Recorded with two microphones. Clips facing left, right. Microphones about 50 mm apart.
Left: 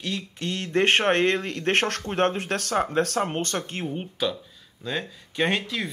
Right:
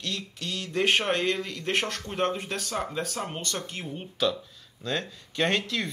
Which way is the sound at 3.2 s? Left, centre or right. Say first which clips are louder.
Left 6 dB; left.